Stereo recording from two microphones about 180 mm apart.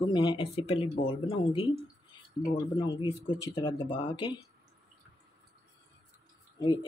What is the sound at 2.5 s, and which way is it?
Speech, 25° left (ahead or behind).